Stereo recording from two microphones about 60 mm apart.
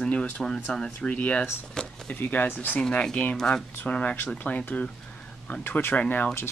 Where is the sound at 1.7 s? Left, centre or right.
Centre.